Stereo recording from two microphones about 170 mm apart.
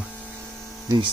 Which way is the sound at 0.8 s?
25° right (ahead or behind).